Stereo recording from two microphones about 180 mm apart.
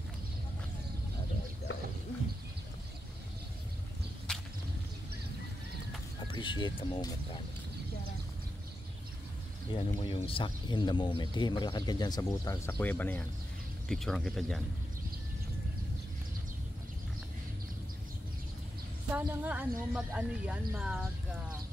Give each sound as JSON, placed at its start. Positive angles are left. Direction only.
{"t": 4.3, "sound": "a sound", "side_deg": 5}
{"t": 6.1, "sound": "music", "side_deg": 25}
{"t": 9.8, "sound": "speech", "side_deg": 35}
{"t": 19.1, "sound": "speech", "side_deg": -10}